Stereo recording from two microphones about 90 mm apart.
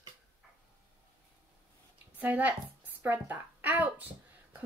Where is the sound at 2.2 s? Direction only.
15° right (ahead or behind).